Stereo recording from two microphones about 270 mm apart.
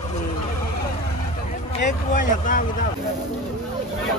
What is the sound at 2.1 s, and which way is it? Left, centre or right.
Speech, left.